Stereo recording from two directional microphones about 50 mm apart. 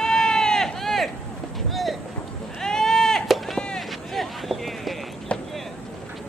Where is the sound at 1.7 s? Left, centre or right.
Centre.